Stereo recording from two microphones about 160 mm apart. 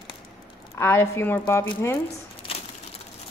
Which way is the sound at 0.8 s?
15° left (ahead or behind).